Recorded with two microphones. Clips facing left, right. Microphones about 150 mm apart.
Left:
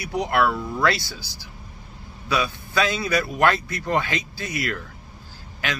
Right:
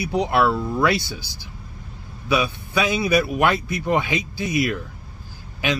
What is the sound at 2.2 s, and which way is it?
Speech, 20° right (ahead or behind).